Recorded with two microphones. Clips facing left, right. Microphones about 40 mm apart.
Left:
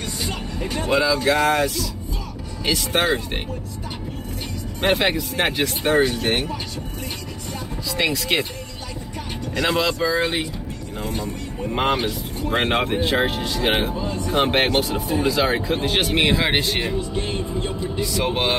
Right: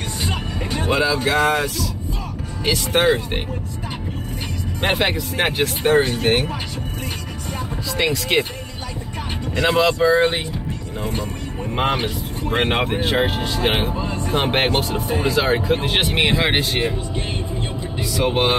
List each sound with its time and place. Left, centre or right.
0.8 s speech: centre
4.9 s speech: centre
8.0 s speech: centre
9.6 s speech: centre
9.9 s speech: right
11.8 s speech: centre
13.3 s speech: right
13.9 s vehicle: right
14.4 s speech: centre
14.8 s speech: centre
15.7 s speech: right
18.0 s speech: centre